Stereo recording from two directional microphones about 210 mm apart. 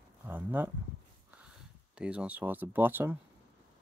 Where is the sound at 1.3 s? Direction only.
5° right (ahead or behind).